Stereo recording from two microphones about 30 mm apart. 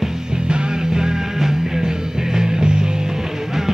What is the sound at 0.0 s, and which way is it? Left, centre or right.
Music, right.